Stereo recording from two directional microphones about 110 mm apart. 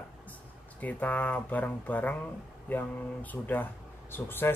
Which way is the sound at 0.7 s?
15° left (ahead or behind).